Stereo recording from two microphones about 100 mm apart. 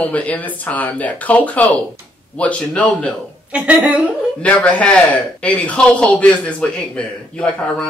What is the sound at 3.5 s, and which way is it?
Speech, 15° right (ahead or behind).